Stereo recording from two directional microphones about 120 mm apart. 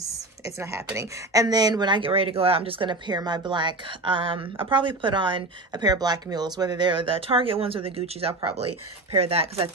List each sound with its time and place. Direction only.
0.6 s a woman's voice: 20° right (ahead or behind); by 9.7 s 55° right (ahead or behind)